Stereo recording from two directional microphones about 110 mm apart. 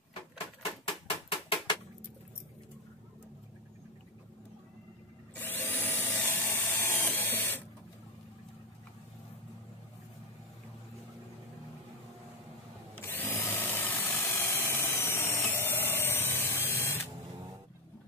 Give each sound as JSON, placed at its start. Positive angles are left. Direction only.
{"t": 0.8, "sound": "a sound", "side_deg": 50}
{"t": 5.3, "sound": "drill", "side_deg": 20}
{"t": 13.0, "sound": "drill", "side_deg": 20}